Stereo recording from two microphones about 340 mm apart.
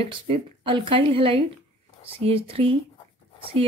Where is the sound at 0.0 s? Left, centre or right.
Centre.